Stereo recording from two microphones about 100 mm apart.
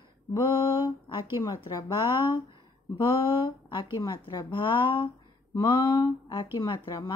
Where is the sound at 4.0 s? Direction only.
35° left (ahead or behind).